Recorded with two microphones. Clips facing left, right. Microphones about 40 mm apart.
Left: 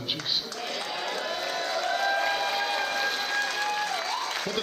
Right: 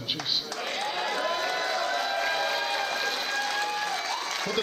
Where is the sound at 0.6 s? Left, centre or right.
Right.